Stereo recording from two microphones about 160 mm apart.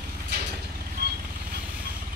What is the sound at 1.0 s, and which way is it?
Vehicle, 70° right (ahead or behind).